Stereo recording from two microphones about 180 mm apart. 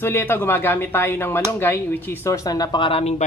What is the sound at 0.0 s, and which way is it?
Speech, 10° left (ahead or behind).